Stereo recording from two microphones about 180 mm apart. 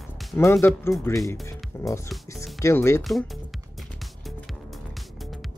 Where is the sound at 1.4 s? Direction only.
15° left (ahead or behind).